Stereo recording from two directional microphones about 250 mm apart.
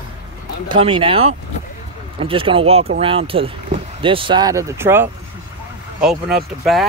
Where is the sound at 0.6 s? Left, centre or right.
Centre.